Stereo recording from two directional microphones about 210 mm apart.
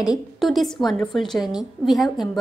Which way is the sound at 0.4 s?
Centre (ahead or behind).